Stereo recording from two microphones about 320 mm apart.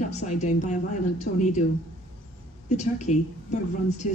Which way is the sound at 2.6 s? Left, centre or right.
Left.